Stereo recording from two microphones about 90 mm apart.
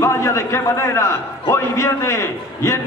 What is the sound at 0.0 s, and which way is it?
A man's voice, 30° left (ahead or behind).